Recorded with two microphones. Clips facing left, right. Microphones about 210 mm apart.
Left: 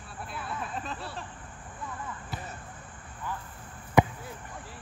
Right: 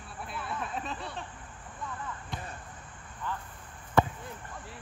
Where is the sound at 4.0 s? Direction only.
15° left (ahead or behind).